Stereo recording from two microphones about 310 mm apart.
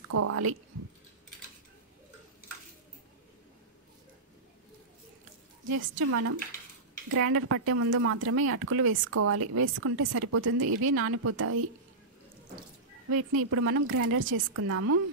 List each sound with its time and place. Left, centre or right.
0.1 s speech: right
5.9 s speech: right
13.1 s speech: right